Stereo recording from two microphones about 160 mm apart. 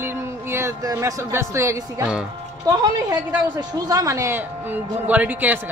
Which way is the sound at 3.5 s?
25° right (ahead or behind).